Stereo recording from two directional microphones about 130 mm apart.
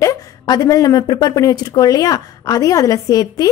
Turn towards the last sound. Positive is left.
turn(degrees=25)  # may be behind; listen again after turning